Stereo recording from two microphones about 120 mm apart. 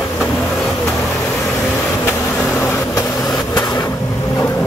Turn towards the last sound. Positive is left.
turn(degrees=30)  # may be behind; listen again after turning